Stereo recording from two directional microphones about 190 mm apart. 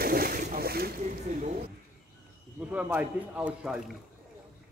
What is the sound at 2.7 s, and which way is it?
Speech, 10° right (ahead or behind).